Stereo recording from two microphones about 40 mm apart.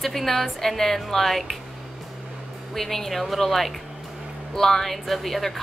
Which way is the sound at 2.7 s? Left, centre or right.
Centre.